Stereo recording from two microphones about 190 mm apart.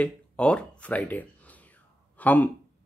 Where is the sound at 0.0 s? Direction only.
5° left (ahead or behind).